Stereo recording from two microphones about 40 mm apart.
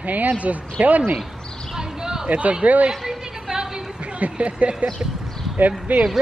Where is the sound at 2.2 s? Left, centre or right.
Right.